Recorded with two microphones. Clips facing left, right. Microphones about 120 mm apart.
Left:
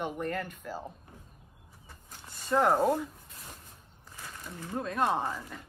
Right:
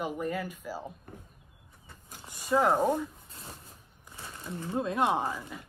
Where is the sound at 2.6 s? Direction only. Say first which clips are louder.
Left 2 dB; 5° left (ahead or behind).